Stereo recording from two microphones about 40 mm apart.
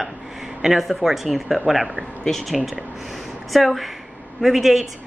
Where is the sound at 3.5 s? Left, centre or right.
Centre.